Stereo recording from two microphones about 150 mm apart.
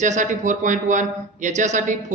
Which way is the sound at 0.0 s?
55° right (ahead or behind).